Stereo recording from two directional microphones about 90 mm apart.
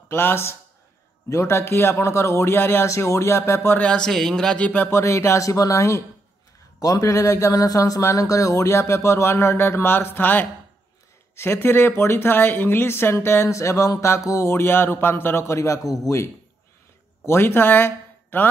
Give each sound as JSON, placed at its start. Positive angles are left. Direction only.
{"t": 0.1, "sound": "speech", "side_deg": 25}
{"t": 3.7, "sound": "a man's voice", "side_deg": 10}
{"t": 4.9, "sound": "speech", "side_deg": 30}
{"t": 17.3, "sound": "speech", "side_deg": 25}